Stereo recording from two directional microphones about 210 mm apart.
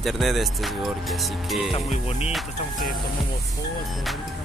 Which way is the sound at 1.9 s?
30° left (ahead or behind).